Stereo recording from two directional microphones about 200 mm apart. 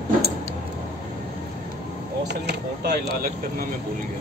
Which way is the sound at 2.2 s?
55° right (ahead or behind).